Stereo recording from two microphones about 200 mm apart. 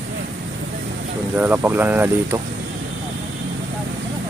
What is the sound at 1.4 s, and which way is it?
Speech, 10° right (ahead or behind).